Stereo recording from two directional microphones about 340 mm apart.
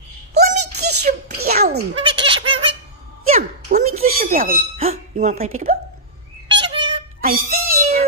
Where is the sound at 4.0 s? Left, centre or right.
Right.